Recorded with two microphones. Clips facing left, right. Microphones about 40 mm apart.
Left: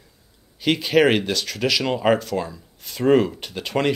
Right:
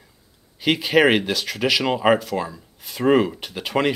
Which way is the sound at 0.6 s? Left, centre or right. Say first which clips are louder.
Even; centre.